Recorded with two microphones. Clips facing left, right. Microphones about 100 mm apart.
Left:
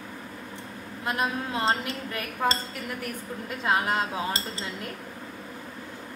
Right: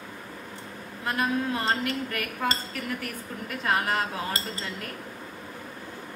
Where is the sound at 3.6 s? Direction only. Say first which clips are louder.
Left 1 dB; 20° left (ahead or behind).